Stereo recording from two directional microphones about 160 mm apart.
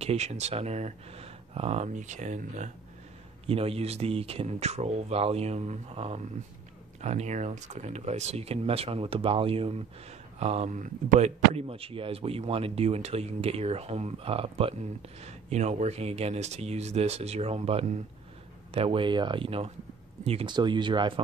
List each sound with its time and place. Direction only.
0.0 s speech: 40° right (ahead or behind)
3.4 s speech: 35° right (ahead or behind)